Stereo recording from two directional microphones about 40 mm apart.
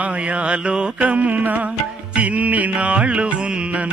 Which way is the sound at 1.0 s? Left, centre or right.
Right.